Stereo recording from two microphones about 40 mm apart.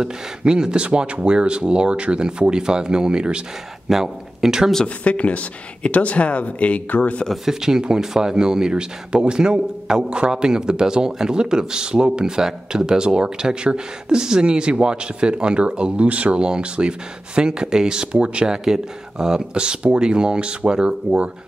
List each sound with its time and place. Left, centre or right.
0.0 s speech: centre
4.8 s speech: left
7.4 s speech: centre; by 16.3 s right
16.3 s speech: right
18.5 s speech: centre